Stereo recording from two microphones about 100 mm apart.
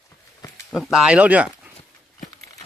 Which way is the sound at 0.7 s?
Centre (ahead or behind).